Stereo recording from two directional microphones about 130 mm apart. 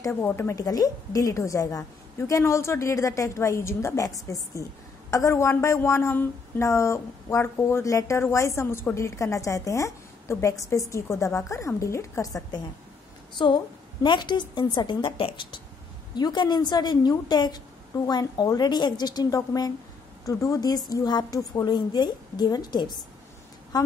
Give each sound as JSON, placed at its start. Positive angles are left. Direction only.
{"t": 0.1, "sound": "a woman's voice", "side_deg": 20}
{"t": 14.0, "sound": "a woman's voice", "side_deg": 35}